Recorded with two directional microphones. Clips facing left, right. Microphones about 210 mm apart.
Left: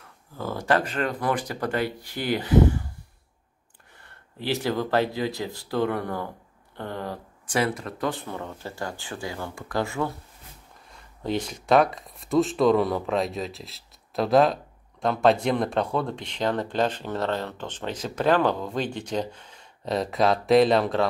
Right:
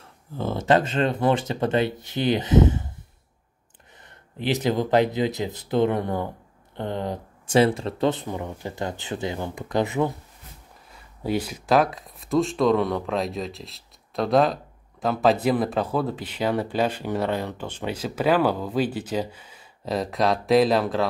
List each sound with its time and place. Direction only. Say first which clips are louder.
0.4 s speech: right 4 dB; 25° right (ahead or behind)
4.0 s speech: right 5 dB; 20° right (ahead or behind)
10.9 s speech: right 2 dB; 5° right (ahead or behind)